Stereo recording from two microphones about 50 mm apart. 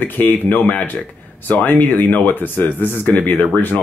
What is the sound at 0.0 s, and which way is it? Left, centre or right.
Speech, left.